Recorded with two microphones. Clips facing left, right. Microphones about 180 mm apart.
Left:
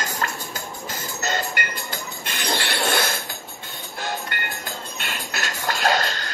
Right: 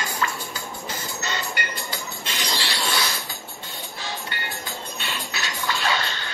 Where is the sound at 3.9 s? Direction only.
50° left (ahead or behind).